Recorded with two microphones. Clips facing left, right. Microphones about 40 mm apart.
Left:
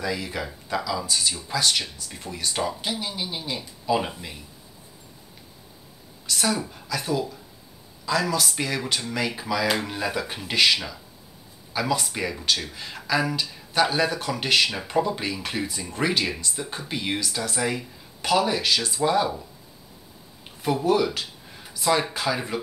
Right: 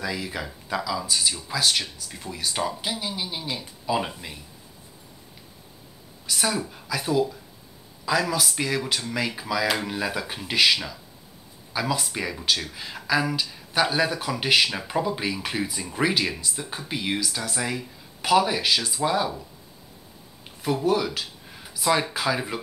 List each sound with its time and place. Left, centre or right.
0.0 s speech: centre
6.2 s speech: centre
20.8 s speech: centre